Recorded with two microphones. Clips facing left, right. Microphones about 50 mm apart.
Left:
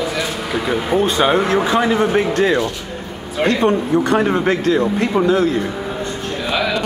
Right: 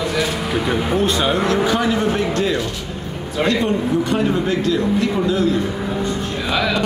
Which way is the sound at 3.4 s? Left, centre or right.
Left.